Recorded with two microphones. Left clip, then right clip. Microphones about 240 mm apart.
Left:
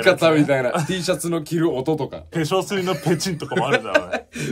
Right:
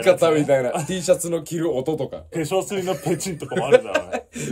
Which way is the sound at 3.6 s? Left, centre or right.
Centre.